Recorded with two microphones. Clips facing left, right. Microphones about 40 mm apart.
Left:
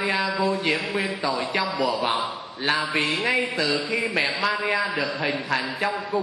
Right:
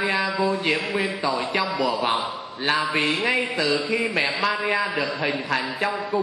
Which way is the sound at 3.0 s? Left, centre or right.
Right.